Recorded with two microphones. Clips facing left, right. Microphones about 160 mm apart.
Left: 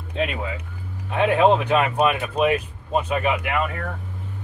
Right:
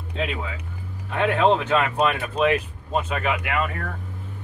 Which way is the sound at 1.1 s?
15° left (ahead or behind).